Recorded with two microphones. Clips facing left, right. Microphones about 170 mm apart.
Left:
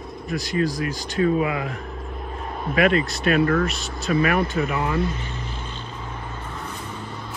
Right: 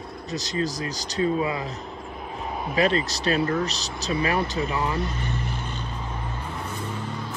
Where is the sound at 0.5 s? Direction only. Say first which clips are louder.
Left 4 dB; 30° right (ahead or behind).